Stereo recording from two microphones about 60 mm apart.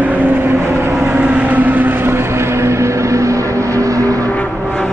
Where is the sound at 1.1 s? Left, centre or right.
Right.